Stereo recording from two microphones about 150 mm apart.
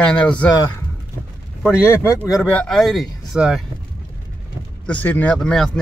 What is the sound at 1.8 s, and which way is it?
Speech, 10° right (ahead or behind).